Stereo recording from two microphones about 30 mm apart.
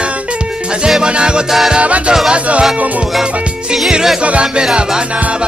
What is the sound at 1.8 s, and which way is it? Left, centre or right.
Music, right.